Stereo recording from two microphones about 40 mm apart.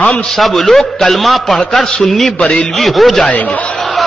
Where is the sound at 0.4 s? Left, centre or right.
Centre.